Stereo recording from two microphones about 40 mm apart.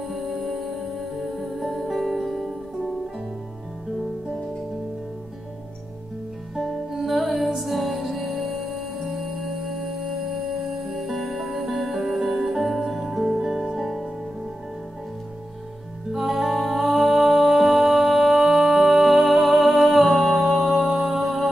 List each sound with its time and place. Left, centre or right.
0.1 s music: centre
6.5 s music: centre
16.1 s music: centre